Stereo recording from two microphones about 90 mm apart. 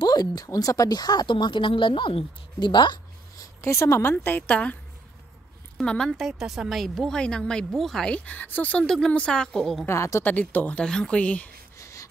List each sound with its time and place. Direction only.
0.0 s a woman's voice: 50° left (ahead or behind)
3.3 s a woman's voice: 35° left (ahead or behind); by 4.7 s 15° left (ahead or behind)
5.8 s a woman's voice: 5° left (ahead or behind)
8.8 s a woman's voice: 5° left (ahead or behind)
9.8 s speech: 35° left (ahead or behind)
10.2 s a woman's voice: 20° left (ahead or behind)
11.8 s a sound: 35° left (ahead or behind)